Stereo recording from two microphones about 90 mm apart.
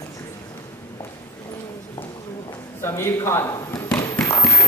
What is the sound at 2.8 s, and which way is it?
Speech, 30° left (ahead or behind).